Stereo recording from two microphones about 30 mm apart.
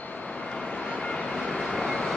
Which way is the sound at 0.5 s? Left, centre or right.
Left.